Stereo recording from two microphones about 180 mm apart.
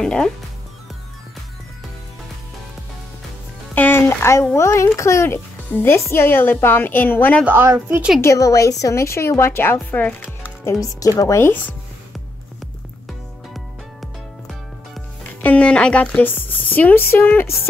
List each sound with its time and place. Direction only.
0.0 s music: 5° left (ahead or behind)
3.7 s speech: 10° left (ahead or behind)
7.4 s a woman's voice: 15° right (ahead or behind)
8.2 s a woman's voice: 15° left (ahead or behind)
14.5 s speech: 5° left (ahead or behind)